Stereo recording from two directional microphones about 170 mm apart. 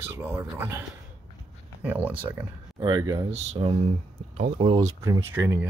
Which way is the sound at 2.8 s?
25° right (ahead or behind).